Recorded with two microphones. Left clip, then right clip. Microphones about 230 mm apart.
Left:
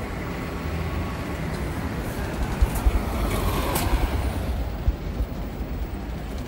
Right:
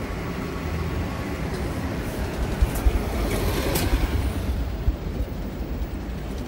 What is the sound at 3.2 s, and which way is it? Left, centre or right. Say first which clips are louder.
Vehicle: right 1 dB; left.